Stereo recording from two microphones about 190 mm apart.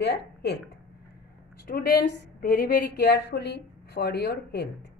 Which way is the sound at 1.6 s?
50° left (ahead or behind).